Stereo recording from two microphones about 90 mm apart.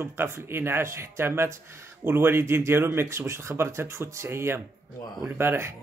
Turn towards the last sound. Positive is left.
turn(degrees=-25)  # may be behind; listen again after turning